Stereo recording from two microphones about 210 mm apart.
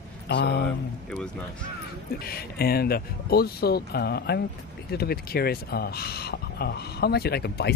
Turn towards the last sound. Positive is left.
turn(degrees=50)  # may be behind; listen again after turning